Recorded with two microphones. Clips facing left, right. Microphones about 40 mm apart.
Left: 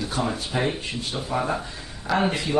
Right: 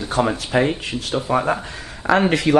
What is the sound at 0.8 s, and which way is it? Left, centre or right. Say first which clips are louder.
Speech: right 6 dB; right.